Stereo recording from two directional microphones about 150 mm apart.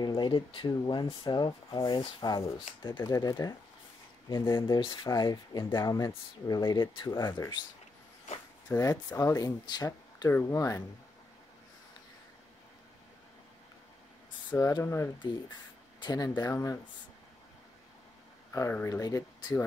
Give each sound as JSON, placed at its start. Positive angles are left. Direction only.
{"t": 0.0, "sound": "speech", "side_deg": 30}
{"t": 4.7, "sound": "speech", "side_deg": 30}
{"t": 5.9, "sound": "speech", "side_deg": 20}
{"t": 8.7, "sound": "speech", "side_deg": 20}
{"t": 14.6, "sound": "speech", "side_deg": 20}
{"t": 18.5, "sound": "speech", "side_deg": 15}